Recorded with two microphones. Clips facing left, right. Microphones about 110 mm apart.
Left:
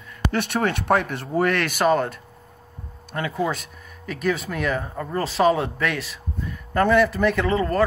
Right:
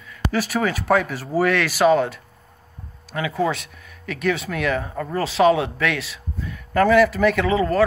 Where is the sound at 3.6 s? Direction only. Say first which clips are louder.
Left 1 dB; 40° left (ahead or behind).